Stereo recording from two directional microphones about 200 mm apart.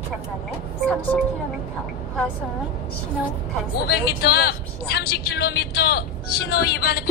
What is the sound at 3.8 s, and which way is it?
Speech, 50° left (ahead or behind).